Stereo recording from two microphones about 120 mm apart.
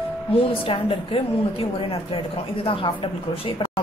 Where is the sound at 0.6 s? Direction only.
50° left (ahead or behind).